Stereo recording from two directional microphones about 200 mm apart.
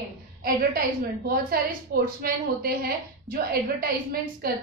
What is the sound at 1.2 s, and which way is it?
A woman's voice, 45° right (ahead or behind).